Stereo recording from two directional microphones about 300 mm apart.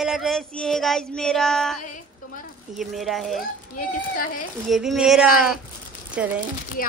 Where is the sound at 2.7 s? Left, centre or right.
Centre.